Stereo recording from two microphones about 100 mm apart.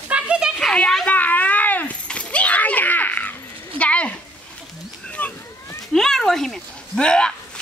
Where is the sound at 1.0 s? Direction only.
15° left (ahead or behind).